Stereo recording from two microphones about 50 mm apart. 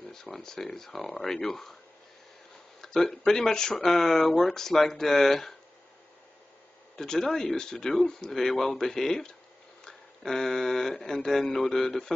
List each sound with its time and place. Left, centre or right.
0.1 s speech: centre
2.8 s a sound: centre
3.3 s speech: centre
7.0 s speech: centre